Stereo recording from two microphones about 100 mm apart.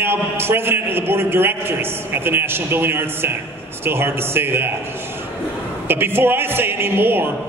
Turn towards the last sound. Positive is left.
turn(degrees=-20)  # may be behind; listen again after turning